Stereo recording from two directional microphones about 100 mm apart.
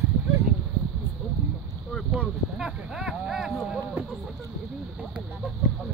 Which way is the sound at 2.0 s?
10° right (ahead or behind).